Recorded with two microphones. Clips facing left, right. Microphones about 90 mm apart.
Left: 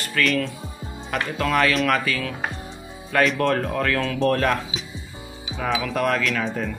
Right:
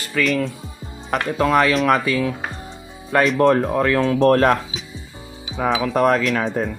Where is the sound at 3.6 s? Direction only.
25° right (ahead or behind).